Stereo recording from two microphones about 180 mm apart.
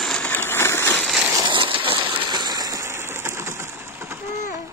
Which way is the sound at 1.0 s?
5° right (ahead or behind).